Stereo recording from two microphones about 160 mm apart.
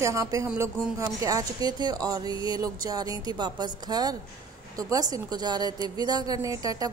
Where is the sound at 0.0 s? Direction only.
20° right (ahead or behind).